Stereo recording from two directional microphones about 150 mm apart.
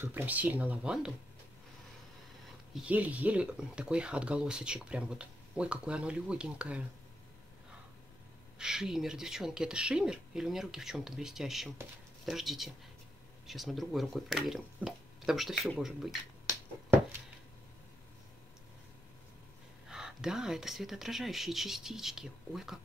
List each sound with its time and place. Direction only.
0.0 s speech: 15° right (ahead or behind)
2.7 s speech: 10° right (ahead or behind)
8.5 s speech: 5° right (ahead or behind)
19.9 s speech: 5° right (ahead or behind)